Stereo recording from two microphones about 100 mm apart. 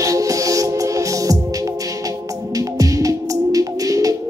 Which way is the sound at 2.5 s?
35° right (ahead or behind).